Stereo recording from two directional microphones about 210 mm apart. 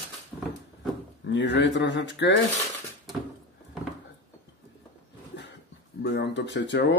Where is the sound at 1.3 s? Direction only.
55° left (ahead or behind).